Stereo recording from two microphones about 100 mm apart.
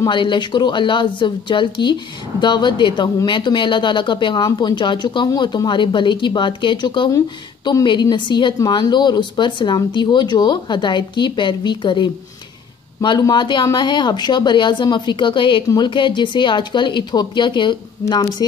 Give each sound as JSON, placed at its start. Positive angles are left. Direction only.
{"t": 0.1, "sound": "speech", "side_deg": 55}
{"t": 8.5, "sound": "speech", "side_deg": 40}
{"t": 13.2, "sound": "speech", "side_deg": 45}